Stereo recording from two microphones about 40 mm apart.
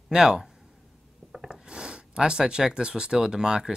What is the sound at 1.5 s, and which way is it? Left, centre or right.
Speech, right.